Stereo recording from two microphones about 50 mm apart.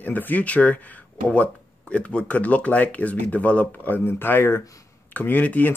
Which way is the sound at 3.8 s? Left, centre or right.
Left.